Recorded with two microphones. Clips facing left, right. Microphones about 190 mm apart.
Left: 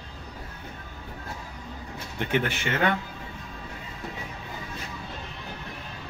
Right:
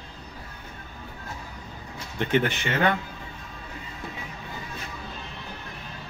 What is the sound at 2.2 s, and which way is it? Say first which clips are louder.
Speech: right 3 dB; 10° left (ahead or behind).